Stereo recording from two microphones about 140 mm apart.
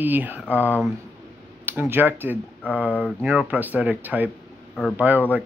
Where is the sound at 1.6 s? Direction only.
15° right (ahead or behind).